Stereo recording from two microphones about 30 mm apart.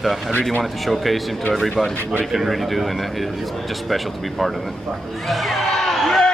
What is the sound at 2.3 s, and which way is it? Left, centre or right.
Speech, centre.